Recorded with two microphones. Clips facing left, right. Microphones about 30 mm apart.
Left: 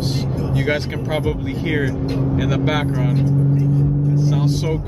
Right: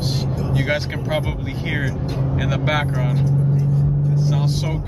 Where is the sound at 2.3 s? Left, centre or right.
Centre.